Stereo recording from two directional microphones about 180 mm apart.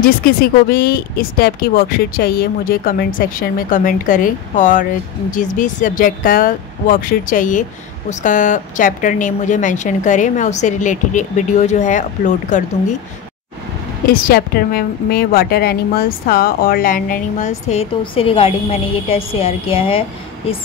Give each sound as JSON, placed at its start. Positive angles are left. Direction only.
{"t": 0.0, "sound": "a woman's voice", "side_deg": 55}
{"t": 14.3, "sound": "a woman's voice", "side_deg": 60}